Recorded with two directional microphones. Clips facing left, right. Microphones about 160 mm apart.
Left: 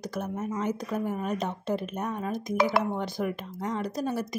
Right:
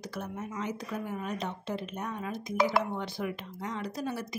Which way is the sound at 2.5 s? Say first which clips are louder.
Left 2 dB; 65° left (ahead or behind).